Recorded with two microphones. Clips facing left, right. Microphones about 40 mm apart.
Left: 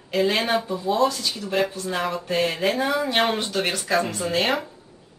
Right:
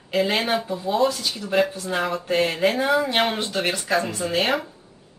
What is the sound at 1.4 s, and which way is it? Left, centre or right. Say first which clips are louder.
Speech: right 3 dB; centre.